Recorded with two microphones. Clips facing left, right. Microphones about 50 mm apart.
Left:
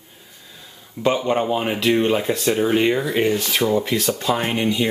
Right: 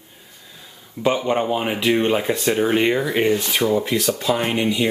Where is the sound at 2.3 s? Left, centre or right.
Right.